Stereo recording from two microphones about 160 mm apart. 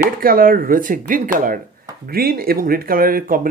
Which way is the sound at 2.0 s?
70° right (ahead or behind).